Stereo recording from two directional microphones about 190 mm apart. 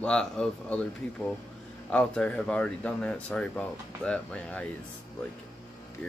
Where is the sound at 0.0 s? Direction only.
5° left (ahead or behind).